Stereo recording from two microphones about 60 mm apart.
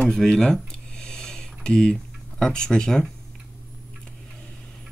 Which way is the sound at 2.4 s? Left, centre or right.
Centre.